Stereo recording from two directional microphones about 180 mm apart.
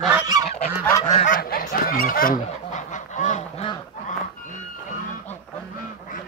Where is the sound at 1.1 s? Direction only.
45° left (ahead or behind).